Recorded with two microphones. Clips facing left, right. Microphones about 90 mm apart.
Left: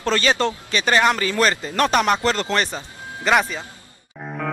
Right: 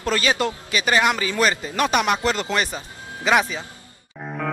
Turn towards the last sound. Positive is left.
turn(degrees=0)  # may be behind; listen again after turning